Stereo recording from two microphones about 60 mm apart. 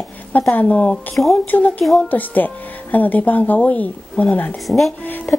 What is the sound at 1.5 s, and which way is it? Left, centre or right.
Speech, left.